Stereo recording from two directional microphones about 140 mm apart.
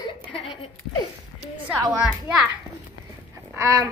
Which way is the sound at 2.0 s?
5° right (ahead or behind).